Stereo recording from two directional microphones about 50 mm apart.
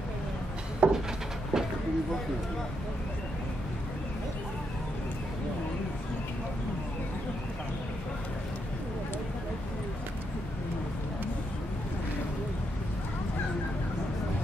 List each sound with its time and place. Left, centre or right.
0.8 s wood: right
1.5 s vehicle: centre